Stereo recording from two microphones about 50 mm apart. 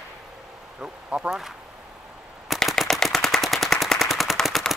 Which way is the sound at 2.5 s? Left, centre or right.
Centre.